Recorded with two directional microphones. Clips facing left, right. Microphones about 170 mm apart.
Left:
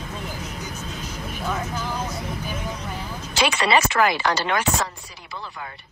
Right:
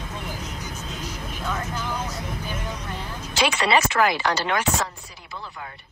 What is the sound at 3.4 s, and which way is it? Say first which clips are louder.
Speech: left 1 dB; 85° left.